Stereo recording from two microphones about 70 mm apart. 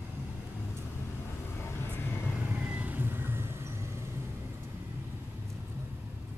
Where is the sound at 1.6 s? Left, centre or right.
Left.